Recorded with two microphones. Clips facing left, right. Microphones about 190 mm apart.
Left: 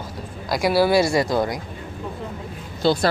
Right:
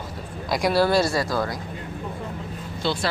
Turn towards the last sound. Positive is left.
turn(degrees=40)  # may be behind; listen again after turning